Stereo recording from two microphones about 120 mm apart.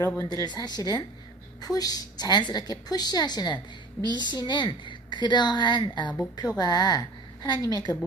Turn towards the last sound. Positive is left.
turn(degrees=30)  # may be behind; listen again after turning